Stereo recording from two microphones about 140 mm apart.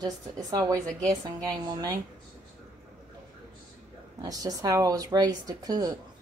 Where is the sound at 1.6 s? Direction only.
25° right (ahead or behind).